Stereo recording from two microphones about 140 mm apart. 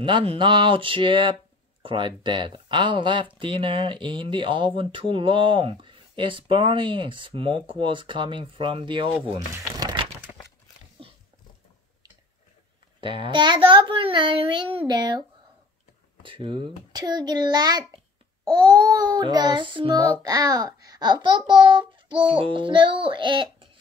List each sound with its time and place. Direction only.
0.0 s speech: 40° right (ahead or behind)
9.5 s crumpling: 20° right (ahead or behind)
13.0 s a child's voice: 35° right (ahead or behind)
20.0 s speech: 25° right (ahead or behind)